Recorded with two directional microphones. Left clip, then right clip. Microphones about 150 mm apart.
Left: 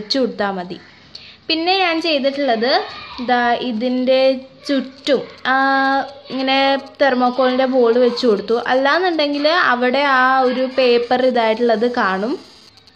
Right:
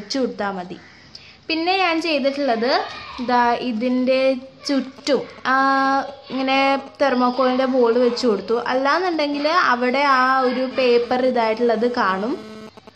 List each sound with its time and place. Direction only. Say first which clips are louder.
0.1 s a woman's voice: left 4 dB; 20° left (ahead or behind)
1.5 s a woman's voice: left 3 dB; 10° left (ahead or behind)